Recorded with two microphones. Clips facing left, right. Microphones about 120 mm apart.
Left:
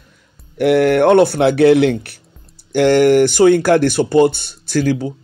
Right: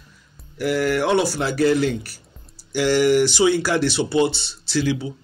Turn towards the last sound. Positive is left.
turn(degrees=45)  # may be behind; listen again after turning